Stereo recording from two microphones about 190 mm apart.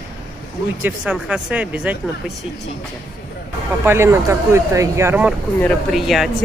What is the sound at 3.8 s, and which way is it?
Speech, 10° right (ahead or behind).